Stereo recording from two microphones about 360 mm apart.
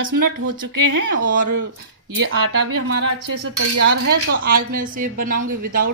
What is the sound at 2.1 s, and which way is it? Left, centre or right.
Speech, right.